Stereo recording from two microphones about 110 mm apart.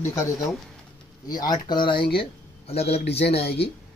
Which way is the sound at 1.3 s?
35° left (ahead or behind).